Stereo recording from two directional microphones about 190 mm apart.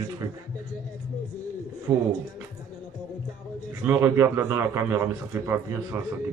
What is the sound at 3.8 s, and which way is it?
Speech, 15° right (ahead or behind).